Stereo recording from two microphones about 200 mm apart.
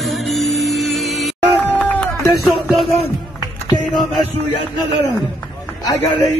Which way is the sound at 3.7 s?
20° left (ahead or behind).